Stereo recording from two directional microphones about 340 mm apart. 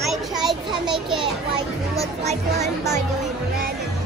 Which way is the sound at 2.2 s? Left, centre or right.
Centre.